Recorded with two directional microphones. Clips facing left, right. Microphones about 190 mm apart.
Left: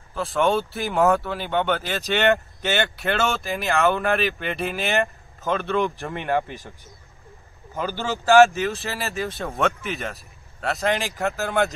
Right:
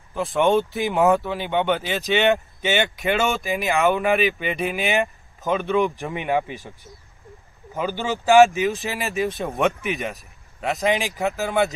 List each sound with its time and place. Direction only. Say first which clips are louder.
0.1 s speech: right 2 dB; 15° right (ahead or behind)
7.8 s speech: right 2 dB; 15° right (ahead or behind)